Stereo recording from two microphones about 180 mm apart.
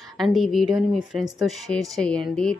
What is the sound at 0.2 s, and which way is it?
A woman's voice, centre (ahead or behind).